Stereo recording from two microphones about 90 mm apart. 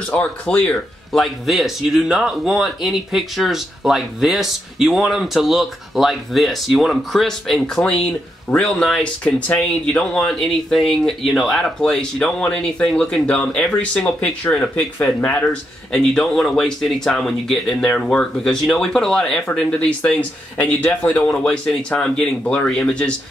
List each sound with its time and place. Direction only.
0.1 s speech: 15° left (ahead or behind)
1.2 s speech: centre (ahead or behind)
14.6 s speech: 25° left (ahead or behind)
15.9 s speech: 10° left (ahead or behind)